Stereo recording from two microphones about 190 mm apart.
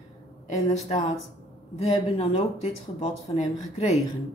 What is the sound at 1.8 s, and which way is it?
Speech, 35° left (ahead or behind).